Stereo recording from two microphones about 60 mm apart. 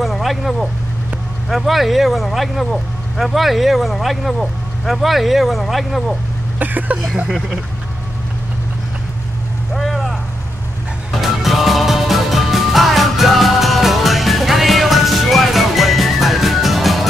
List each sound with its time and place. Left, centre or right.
0.0 s vehicle: centre
1.5 s speech: centre
6.6 s a sound: right
7.2 s speech: centre
9.8 s vehicle: centre
11.1 s music: centre